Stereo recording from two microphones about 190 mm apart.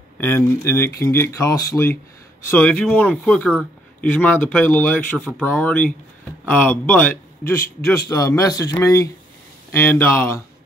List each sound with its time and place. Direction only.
0.2 s a man's voice: 10° left (ahead or behind)